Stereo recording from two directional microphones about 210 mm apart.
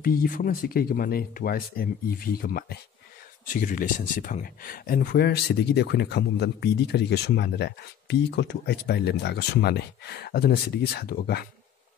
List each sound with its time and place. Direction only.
0.0 s speech: 45° left (ahead or behind)